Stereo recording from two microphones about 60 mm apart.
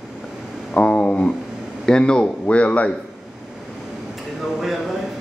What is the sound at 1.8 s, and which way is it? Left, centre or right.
Speech, centre.